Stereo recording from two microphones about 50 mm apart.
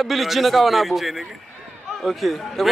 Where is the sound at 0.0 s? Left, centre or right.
Centre.